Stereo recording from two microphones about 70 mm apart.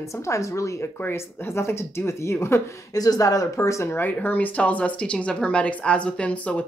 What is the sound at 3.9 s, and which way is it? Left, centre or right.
Speech, left.